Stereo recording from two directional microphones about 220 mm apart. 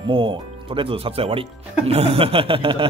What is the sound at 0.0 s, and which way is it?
Speech, 20° right (ahead or behind).